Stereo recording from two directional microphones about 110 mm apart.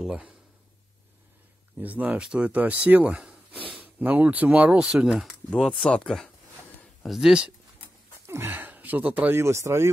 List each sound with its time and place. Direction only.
0.0 s speech: 10° right (ahead or behind)
1.8 s speech: 15° right (ahead or behind)
5.5 s speech: 5° left (ahead or behind)
8.3 s speech: 20° right (ahead or behind)